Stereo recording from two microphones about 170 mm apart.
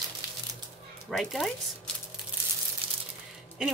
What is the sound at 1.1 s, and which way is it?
Speech, centre (ahead or behind).